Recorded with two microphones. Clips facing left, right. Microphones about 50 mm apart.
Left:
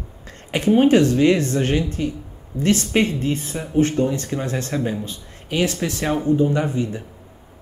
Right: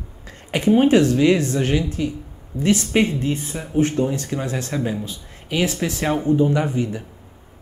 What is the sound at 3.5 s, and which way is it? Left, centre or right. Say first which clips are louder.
Speech: left 1 dB; centre.